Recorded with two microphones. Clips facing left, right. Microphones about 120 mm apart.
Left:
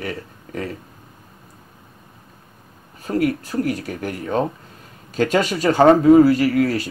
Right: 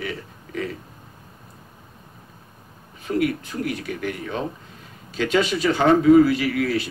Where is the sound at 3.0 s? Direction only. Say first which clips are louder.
Left 2 dB; 40° left (ahead or behind).